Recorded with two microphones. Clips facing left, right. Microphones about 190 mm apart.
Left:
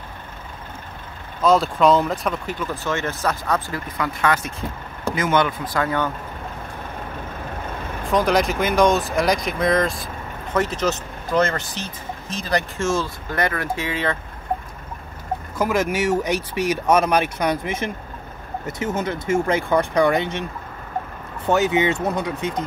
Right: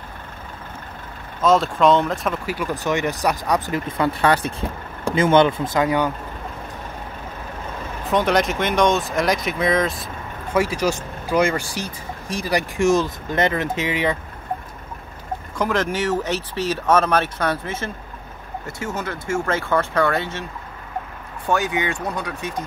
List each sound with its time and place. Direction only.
1.4 s speech: centre (ahead or behind); by 3.8 s 15° right (ahead or behind)
4.0 s speech: 30° right (ahead or behind); by 6.0 s 15° right (ahead or behind)
8.1 s speech: centre (ahead or behind); by 14.1 s 15° right (ahead or behind)
15.5 s speech: 10° left (ahead or behind)
21.5 s speech: 20° left (ahead or behind)